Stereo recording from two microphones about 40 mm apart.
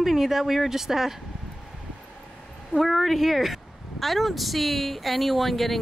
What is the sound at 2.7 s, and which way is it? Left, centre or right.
Speech, centre.